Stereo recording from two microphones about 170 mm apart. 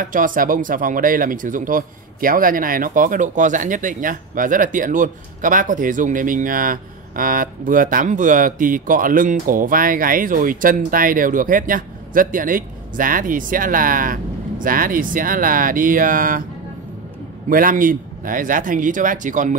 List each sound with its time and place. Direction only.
0.0 s speech: 50° right (ahead or behind)
17.5 s speech: 55° right (ahead or behind)